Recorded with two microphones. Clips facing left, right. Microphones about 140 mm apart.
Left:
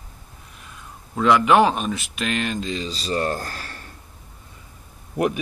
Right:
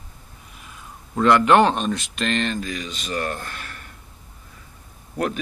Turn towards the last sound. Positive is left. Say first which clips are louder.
# left 3 dB
turn(degrees=15)  # may be behind; listen again after turning